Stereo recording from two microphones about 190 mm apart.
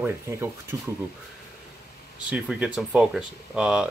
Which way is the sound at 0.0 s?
15° right (ahead or behind).